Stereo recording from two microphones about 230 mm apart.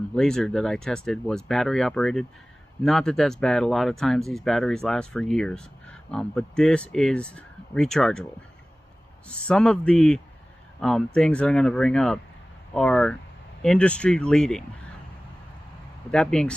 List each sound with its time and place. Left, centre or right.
0.1 s speech: centre
9.3 s speech: centre
16.1 s speech: centre